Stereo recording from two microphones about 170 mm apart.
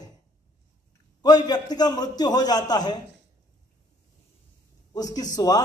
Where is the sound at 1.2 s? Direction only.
25° left (ahead or behind).